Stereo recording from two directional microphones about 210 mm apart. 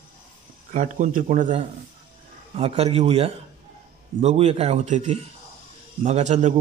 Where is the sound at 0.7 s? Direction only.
40° right (ahead or behind).